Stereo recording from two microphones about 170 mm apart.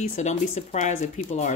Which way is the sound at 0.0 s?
45° left (ahead or behind).